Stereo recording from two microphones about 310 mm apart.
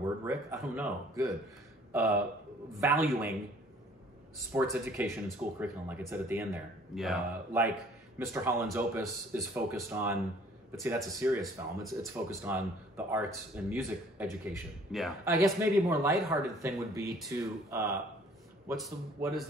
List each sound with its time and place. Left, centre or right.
0.2 s speech: centre
4.5 s speech: centre